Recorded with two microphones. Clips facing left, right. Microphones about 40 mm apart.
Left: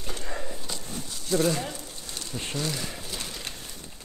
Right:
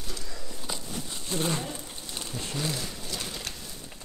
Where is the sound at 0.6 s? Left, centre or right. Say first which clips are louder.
Right 1 dB; centre.